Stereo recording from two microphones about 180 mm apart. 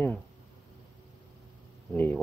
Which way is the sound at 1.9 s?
10° left (ahead or behind).